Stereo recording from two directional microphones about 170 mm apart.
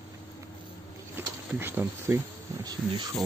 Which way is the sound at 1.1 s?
15° right (ahead or behind).